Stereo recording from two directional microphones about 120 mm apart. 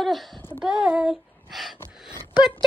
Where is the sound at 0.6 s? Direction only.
5° right (ahead or behind).